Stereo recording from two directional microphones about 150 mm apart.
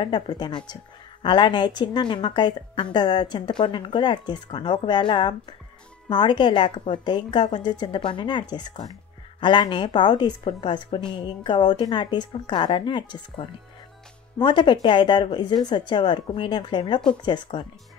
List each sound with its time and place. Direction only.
0.0 s a woman's voice: 30° left (ahead or behind)